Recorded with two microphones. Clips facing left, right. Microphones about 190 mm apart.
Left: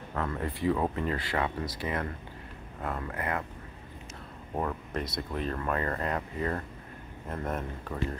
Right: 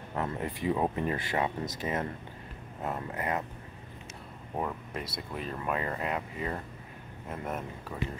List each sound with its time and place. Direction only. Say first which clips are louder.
0.1 s speech: even; 20° right (ahead or behind)
4.6 s speech: left 2 dB; 10° right (ahead or behind)